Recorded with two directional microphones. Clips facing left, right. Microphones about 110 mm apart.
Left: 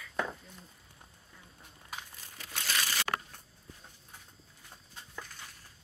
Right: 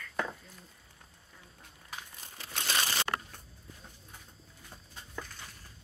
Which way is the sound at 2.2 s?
20° right (ahead or behind).